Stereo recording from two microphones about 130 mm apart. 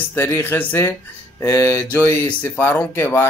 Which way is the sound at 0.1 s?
15° left (ahead or behind).